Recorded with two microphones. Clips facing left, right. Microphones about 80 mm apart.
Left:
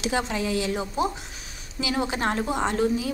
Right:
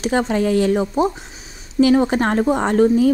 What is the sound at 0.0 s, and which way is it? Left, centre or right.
A woman's voice, right.